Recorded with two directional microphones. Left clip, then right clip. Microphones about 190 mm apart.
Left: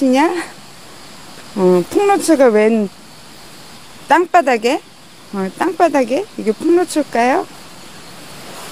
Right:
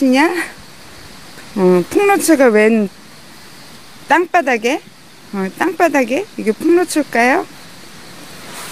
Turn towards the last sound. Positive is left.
turn(degrees=-15)  # may be behind; listen again after turning